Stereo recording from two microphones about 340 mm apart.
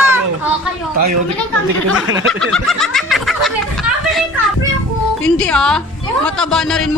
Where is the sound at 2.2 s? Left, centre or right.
Centre.